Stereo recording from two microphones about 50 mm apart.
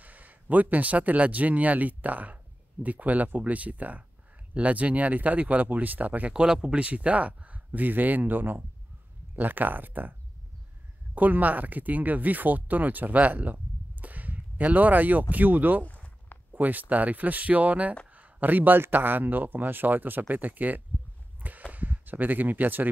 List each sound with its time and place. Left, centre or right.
0.0 s speech: right
6.3 s speech: centre; by 10.1 s right
11.1 s speech: right
15.8 s a sound: left
16.5 s speech: right
21.4 s a sound: right
21.7 s speech: right